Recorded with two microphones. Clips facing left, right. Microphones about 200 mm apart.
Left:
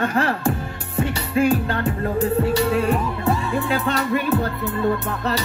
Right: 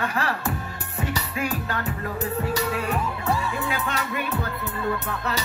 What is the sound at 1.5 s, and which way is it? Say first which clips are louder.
Speech: left 8 dB; 30° left (ahead or behind).